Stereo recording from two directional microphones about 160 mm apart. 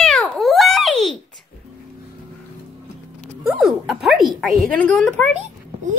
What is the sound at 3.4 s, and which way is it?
A woman's voice, centre (ahead or behind).